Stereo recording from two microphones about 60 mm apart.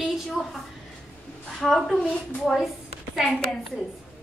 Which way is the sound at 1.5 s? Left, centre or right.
Centre.